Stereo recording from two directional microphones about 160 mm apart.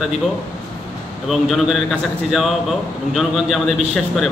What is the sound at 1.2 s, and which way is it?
A man's voice, centre (ahead or behind).